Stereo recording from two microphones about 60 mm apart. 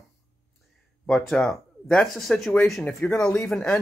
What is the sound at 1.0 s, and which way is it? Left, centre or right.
Speech, centre.